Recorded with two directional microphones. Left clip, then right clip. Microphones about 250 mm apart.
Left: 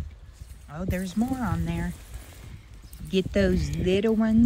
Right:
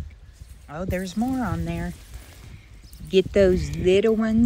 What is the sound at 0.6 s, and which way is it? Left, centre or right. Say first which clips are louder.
Speech: right 4 dB; centre.